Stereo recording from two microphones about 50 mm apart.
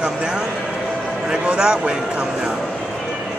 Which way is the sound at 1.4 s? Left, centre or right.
Centre.